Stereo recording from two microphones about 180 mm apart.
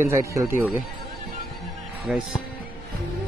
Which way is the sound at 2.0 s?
5° right (ahead or behind).